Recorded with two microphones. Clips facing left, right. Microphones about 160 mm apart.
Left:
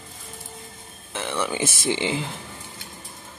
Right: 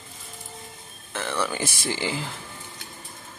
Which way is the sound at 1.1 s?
20° left (ahead or behind).